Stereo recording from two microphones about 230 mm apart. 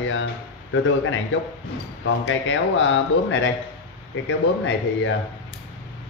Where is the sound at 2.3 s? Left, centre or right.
Left.